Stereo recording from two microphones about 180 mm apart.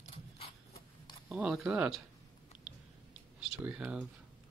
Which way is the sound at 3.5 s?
5° right (ahead or behind).